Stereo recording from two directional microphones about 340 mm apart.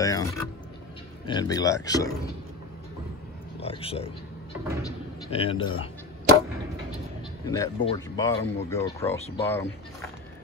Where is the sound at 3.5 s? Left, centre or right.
Centre.